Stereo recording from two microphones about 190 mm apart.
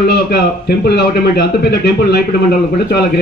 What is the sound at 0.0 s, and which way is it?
A man's voice, 60° left (ahead or behind).